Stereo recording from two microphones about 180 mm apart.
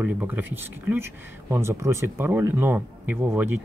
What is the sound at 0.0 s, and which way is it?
Speech, 10° right (ahead or behind).